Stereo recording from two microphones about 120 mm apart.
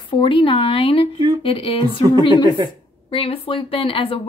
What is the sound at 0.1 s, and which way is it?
Speech, 45° left (ahead or behind).